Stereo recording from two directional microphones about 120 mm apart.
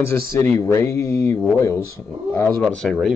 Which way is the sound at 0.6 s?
25° left (ahead or behind).